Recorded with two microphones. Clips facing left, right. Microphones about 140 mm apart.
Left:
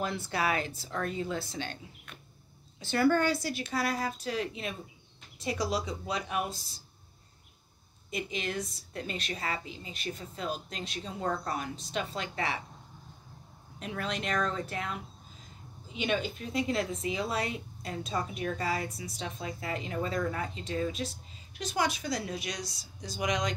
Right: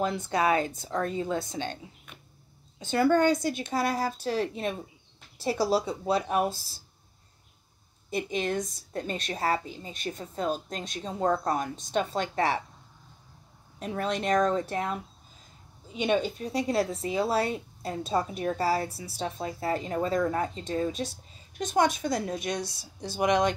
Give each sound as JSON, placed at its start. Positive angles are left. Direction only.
{"t": 0.0, "sound": "speech", "side_deg": -20}
{"t": 2.8, "sound": "speech", "side_deg": -20}
{"t": 8.2, "sound": "speech", "side_deg": -45}
{"t": 13.7, "sound": "speech", "side_deg": -40}
{"t": 22.9, "sound": "speech", "side_deg": -60}